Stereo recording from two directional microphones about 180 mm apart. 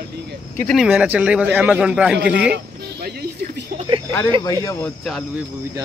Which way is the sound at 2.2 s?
65° right (ahead or behind).